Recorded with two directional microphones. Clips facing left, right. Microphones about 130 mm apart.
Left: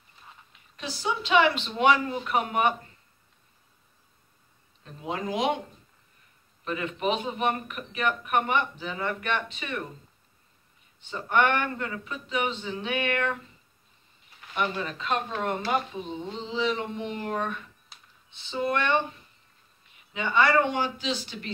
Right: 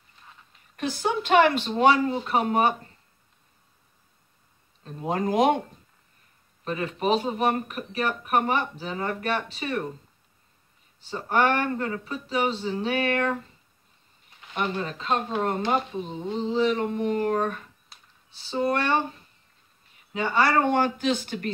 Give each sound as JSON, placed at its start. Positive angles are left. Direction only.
{"t": 0.7, "sound": "speech", "side_deg": -50}
{"t": 4.8, "sound": "speech", "side_deg": -45}
{"t": 6.6, "sound": "speech", "side_deg": -35}
{"t": 11.0, "sound": "speech", "side_deg": -35}
{"t": 14.5, "sound": "speech", "side_deg": -35}
{"t": 20.1, "sound": "speech", "side_deg": -40}